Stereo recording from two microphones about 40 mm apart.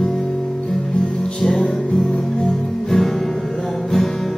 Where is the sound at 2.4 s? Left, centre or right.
Centre.